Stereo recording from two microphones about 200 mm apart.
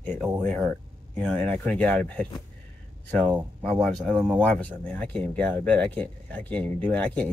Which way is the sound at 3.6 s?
5° left (ahead or behind).